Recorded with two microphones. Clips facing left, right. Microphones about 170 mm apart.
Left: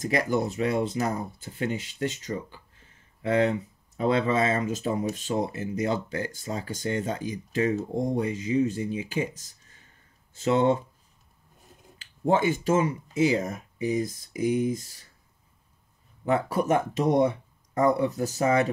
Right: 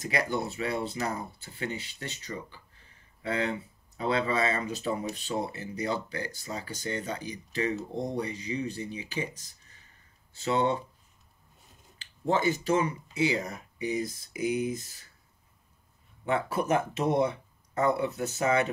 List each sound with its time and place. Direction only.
0.0 s speech: 45° left (ahead or behind)
12.6 s speech: 45° left (ahead or behind)
16.3 s speech: 40° left (ahead or behind)